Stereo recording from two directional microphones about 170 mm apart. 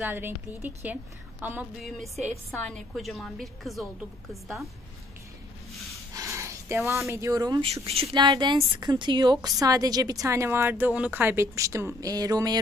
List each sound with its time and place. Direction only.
0.0 s a woman's voice: 10° right (ahead or behind)
2.6 s a woman's voice: 5° left (ahead or behind)
6.1 s a sound: 15° right (ahead or behind)
7.1 s a woman's voice: 15° right (ahead or behind)
7.7 s a woman's voice: 35° right (ahead or behind)